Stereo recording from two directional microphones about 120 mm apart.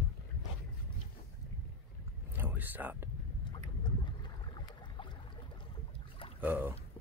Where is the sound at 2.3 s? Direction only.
15° right (ahead or behind).